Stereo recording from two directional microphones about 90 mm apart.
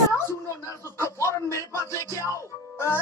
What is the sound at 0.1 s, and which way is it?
Speech, 30° left (ahead or behind).